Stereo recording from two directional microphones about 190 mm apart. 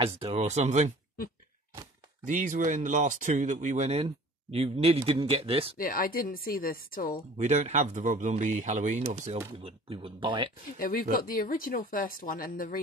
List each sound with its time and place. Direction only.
0.0 s speech: 30° right (ahead or behind)
2.2 s speech: 40° right (ahead or behind)
5.8 s speech: 50° left (ahead or behind)
7.3 s speech: 35° right (ahead or behind)
10.8 s speech: 50° left (ahead or behind)